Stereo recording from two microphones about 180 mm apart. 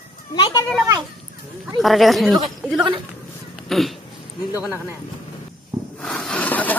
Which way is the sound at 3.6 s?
Centre (ahead or behind).